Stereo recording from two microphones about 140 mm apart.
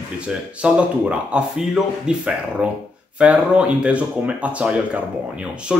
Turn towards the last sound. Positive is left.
turn(degrees=-5)  # may be behind; listen again after turning